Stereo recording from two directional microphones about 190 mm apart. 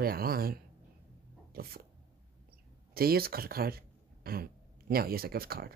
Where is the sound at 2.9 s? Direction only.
50° right (ahead or behind).